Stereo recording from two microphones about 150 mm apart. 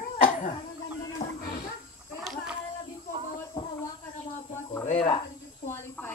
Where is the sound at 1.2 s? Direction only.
65° left (ahead or behind).